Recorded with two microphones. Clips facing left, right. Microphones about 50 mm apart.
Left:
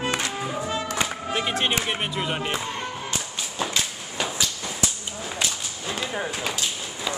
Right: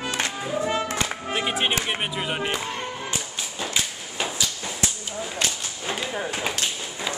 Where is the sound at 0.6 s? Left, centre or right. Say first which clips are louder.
Right 3 dB; right.